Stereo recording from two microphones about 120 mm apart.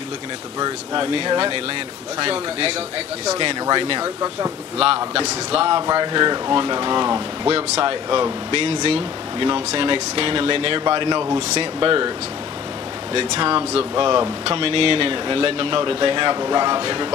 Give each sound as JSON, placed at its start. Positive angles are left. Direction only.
{"t": 0.6, "sound": "speech", "side_deg": -40}
{"t": 4.0, "sound": "speech", "side_deg": -30}
{"t": 4.7, "sound": "speech", "side_deg": -50}
{"t": 5.9, "sound": "speech", "side_deg": -40}
{"t": 7.4, "sound": "speech", "side_deg": -50}
{"t": 13.1, "sound": "speech", "side_deg": -50}